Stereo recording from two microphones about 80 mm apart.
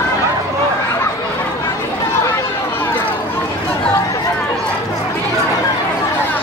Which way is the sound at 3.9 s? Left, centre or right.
Left.